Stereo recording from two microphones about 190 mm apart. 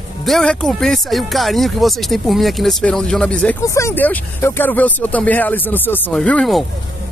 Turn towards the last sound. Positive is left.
turn(degrees=5)  # may be behind; listen again after turning